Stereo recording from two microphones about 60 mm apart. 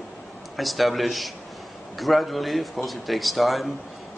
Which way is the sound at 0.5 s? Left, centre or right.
Centre.